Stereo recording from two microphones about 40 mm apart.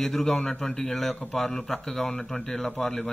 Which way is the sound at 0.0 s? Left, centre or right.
Centre.